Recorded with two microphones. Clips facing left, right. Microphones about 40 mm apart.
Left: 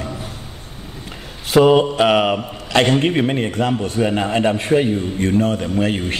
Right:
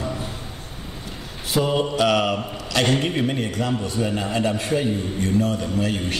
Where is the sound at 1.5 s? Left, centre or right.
Left.